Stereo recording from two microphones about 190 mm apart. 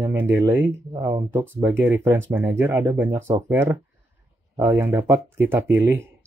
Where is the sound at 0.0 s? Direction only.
15° right (ahead or behind).